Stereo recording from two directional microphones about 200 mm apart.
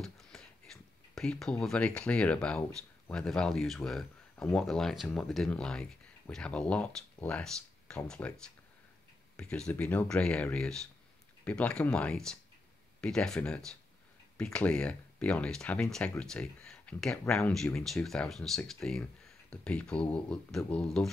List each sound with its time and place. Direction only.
0.0 s a sound: centre (ahead or behind)
3.1 s speech: 5° left (ahead or behind)
9.4 s speech: 5° left (ahead or behind)